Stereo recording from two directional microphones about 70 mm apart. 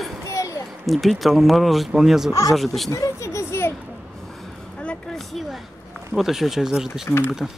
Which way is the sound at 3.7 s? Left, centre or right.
Centre.